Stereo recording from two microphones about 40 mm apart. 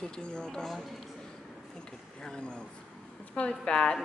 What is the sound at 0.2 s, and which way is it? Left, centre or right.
Speech, left.